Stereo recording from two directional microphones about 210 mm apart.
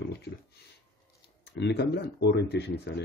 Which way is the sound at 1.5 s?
55° left (ahead or behind).